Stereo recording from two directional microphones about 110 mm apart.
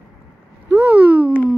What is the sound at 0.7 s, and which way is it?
Speech, 20° right (ahead or behind).